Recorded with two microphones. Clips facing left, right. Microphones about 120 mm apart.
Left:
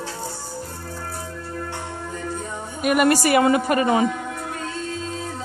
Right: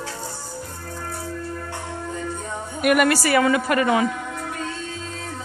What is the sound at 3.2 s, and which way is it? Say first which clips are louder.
Speech: left 2 dB; 20° left (ahead or behind).